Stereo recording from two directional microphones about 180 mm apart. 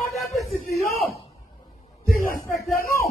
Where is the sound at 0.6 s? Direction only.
40° left (ahead or behind).